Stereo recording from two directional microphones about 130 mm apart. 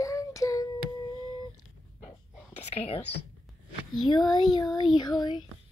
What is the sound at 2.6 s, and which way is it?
Speech, 55° left (ahead or behind).